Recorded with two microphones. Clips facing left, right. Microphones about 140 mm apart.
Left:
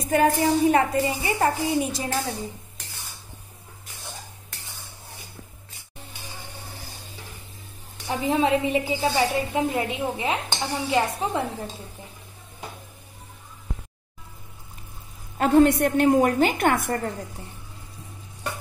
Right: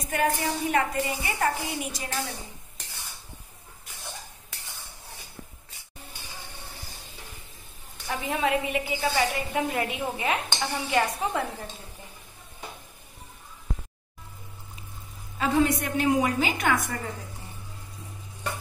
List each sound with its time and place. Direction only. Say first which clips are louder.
0.1 s a woman's voice: left 7 dB; 30° left (ahead or behind)
8.1 s a woman's voice: left 5 dB; 25° left (ahead or behind)
15.3 s a woman's voice: left 6 dB; 55° left (ahead or behind)